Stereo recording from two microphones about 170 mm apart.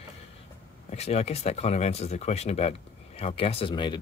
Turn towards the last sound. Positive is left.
turn(degrees=30)  # may be behind; listen again after turning